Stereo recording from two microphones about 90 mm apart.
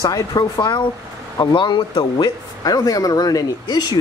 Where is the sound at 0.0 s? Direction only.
40° left (ahead or behind).